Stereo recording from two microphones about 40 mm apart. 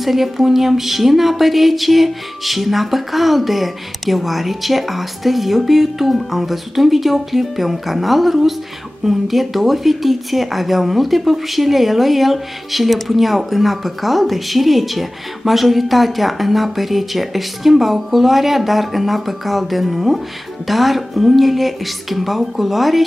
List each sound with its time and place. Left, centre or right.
0.0 s speech: centre